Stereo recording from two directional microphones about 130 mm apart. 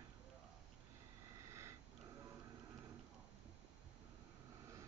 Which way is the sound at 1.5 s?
20° right (ahead or behind).